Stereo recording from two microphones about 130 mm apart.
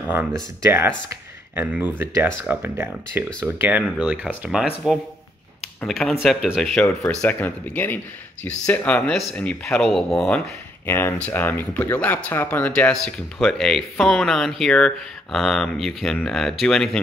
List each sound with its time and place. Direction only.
0.1 s speech: 20° right (ahead or behind); by 10.4 s 5° left (ahead or behind)
10.9 s speech: 15° left (ahead or behind)